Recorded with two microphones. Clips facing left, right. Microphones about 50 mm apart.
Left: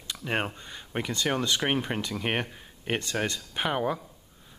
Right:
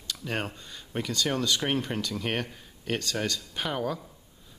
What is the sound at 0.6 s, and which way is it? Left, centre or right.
Speech, left.